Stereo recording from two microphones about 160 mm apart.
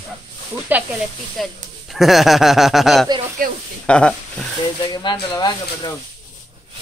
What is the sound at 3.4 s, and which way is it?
Speech, 60° right (ahead or behind).